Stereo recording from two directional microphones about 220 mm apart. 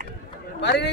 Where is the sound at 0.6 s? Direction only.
50° left (ahead or behind).